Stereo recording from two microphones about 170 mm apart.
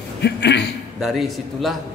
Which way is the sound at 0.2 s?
90° left.